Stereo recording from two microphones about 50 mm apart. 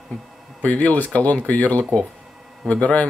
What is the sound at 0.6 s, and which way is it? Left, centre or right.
A man's voice, left.